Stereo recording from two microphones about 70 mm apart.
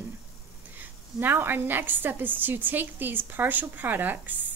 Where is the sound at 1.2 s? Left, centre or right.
Right.